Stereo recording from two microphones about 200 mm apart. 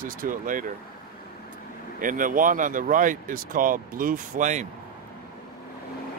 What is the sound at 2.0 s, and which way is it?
Speech, 40° right (ahead or behind).